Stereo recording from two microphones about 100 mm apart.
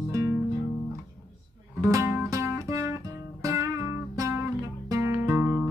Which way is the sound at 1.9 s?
25° right (ahead or behind).